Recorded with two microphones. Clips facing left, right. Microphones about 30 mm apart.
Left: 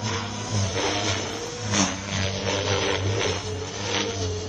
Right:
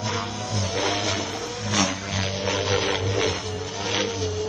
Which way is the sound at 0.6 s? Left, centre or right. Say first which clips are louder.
Right 1 dB; right.